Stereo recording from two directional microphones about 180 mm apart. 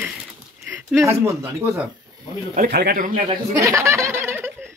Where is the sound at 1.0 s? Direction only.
15° right (ahead or behind).